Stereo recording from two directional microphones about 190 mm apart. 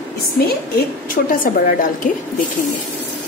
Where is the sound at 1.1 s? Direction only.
50° left (ahead or behind).